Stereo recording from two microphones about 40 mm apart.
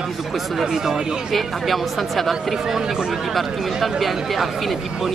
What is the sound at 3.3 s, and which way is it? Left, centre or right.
Speech, centre.